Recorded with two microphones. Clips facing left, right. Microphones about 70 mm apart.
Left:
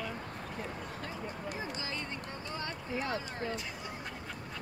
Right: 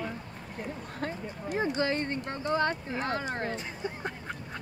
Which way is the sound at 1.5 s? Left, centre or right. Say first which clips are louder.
Right 11 dB; right.